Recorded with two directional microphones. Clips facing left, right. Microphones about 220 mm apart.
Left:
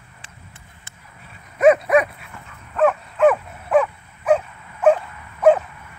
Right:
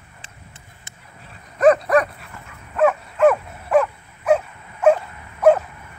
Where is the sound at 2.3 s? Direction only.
5° right (ahead or behind).